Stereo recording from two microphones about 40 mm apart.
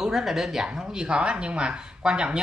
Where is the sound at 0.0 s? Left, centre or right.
Centre.